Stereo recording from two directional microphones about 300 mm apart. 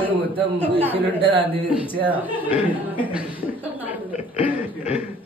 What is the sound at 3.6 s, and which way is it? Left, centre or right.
Chuckle, centre.